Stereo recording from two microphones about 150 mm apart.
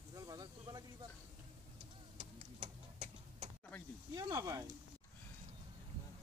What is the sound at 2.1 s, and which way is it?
Tick-tock, 50° right (ahead or behind).